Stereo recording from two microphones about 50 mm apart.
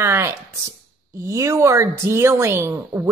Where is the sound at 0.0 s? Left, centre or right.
Right.